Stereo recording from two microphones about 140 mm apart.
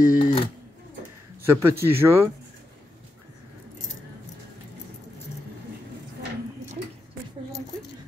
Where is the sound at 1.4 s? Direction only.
15° right (ahead or behind).